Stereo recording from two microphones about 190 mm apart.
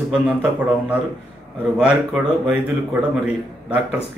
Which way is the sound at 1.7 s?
5° right (ahead or behind).